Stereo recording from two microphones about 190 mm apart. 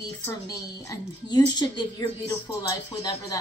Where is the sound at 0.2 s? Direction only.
15° left (ahead or behind).